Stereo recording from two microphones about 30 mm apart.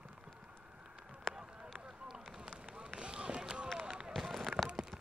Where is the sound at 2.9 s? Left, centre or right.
Right.